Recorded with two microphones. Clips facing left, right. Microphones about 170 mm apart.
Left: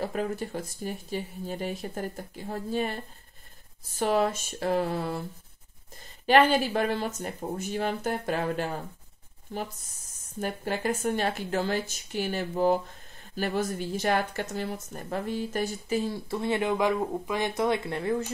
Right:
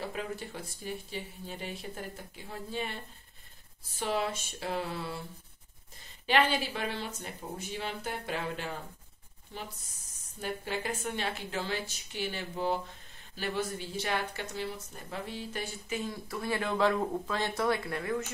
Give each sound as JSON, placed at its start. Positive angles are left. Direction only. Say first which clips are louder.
{"t": 0.0, "sound": "speech", "louder": "left 7 dB", "side_deg": 45}
{"t": 4.0, "sound": "speech", "louder": "left 7 dB", "side_deg": 45}
{"t": 6.2, "sound": "speech", "louder": "left 7 dB", "side_deg": 45}